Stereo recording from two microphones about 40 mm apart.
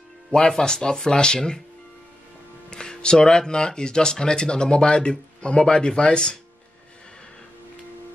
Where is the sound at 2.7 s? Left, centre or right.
Centre.